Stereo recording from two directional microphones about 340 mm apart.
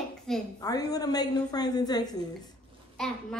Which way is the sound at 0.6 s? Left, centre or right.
Centre.